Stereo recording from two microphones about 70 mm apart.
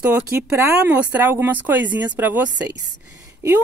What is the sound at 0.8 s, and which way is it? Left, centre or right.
Speech, right.